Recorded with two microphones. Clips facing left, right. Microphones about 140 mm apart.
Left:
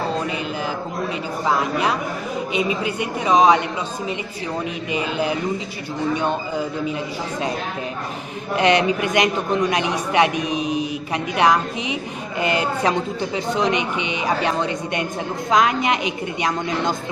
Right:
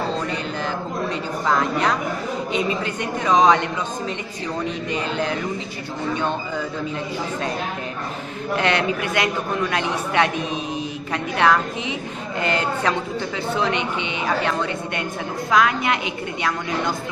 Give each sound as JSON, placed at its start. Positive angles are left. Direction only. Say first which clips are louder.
{"t": 1.5, "sound": "a man's voice", "louder": "even", "side_deg": 10}
{"t": 4.9, "sound": "a man's voice", "louder": "left 3 dB", "side_deg": 10}
{"t": 8.5, "sound": "a man's voice", "louder": "left 4 dB", "side_deg": 20}